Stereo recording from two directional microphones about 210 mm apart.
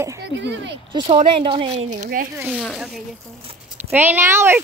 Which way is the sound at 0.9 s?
25° right (ahead or behind).